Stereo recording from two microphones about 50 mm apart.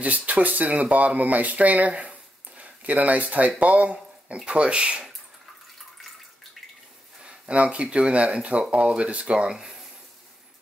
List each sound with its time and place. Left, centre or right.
0.0 s speech: right
7.2 s speech: right